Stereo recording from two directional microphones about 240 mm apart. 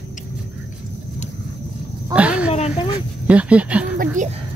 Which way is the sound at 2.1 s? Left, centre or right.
Centre.